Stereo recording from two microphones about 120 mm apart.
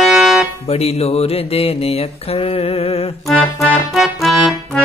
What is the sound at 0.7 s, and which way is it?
Music, 60° left (ahead or behind).